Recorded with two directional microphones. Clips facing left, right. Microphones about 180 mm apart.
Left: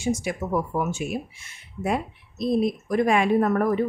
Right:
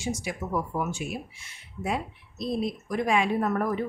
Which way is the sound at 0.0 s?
50° left (ahead or behind).